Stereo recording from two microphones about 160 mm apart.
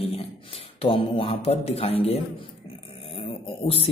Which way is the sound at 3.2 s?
35° left (ahead or behind).